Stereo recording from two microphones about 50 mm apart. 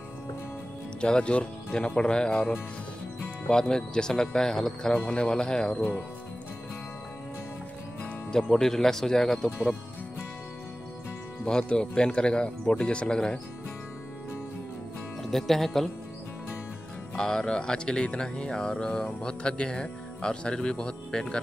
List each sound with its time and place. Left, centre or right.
1.0 s speech: centre
3.4 s speech: centre
8.3 s speech: centre
11.4 s speech: centre
15.3 s speech: centre
17.1 s speech: centre